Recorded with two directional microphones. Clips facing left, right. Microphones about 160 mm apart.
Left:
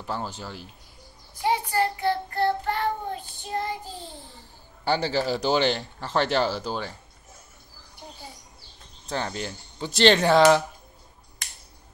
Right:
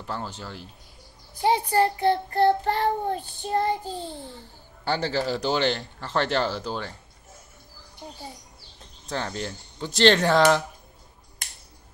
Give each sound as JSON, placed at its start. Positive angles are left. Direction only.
{"t": 0.0, "sound": "speech", "side_deg": 10}
{"t": 1.4, "sound": "child singing", "side_deg": -30}
{"t": 4.8, "sound": "speech", "side_deg": 10}
{"t": 9.1, "sound": "speech", "side_deg": 5}